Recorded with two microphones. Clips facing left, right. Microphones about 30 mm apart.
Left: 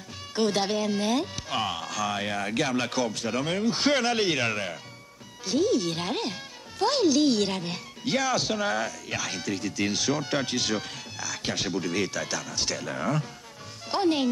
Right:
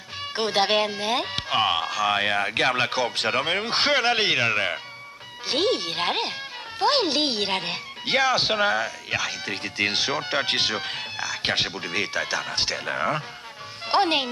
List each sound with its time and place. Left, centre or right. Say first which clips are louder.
0.4 s speech: right 4 dB; right
1.1 s speech: right 2 dB; right
1.5 s speech: right 8 dB; right
3.2 s speech: right 4 dB; right
3.8 s speech: right 3 dB; right
5.5 s speech: right 1 dB; right
5.8 s speech: right 3 dB; right
8.6 s speech: right 4 dB; right
9.4 s speech: right 3 dB; right
13.8 s speech: right 3 dB; right